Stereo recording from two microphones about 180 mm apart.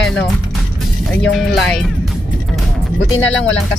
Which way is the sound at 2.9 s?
90° left.